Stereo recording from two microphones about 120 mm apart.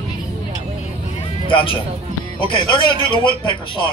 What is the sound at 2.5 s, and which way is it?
Speech, 45° left (ahead or behind).